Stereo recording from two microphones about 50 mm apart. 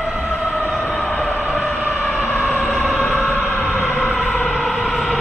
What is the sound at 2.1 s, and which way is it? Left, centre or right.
Vehicle, left.